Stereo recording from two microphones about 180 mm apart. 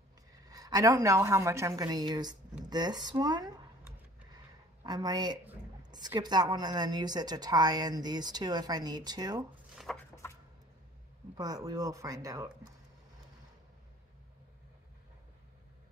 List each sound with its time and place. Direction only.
0.5 s a woman's voice: 20° right (ahead or behind)
9.8 s a sound: centre (ahead or behind)
11.3 s a woman's voice: 20° right (ahead or behind)